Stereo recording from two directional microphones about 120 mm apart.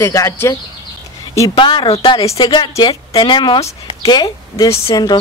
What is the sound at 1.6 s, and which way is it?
A woman's voice, 45° left (ahead or behind).